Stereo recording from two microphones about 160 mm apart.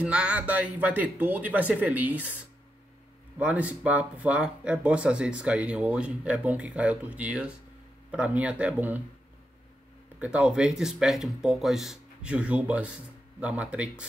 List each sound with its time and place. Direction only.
0.0 s speech: 5° right (ahead or behind)
10.1 s speech: 5° right (ahead or behind)